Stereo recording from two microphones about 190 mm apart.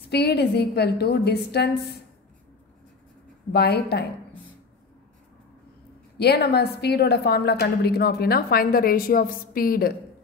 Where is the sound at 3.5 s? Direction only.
60° left (ahead or behind).